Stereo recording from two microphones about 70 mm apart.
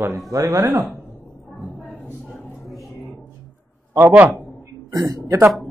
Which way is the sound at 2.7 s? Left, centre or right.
Centre.